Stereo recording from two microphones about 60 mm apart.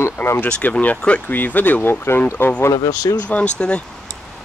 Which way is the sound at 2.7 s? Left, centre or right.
Left.